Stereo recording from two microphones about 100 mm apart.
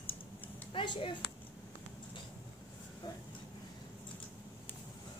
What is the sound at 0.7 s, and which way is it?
Speech, 55° left (ahead or behind).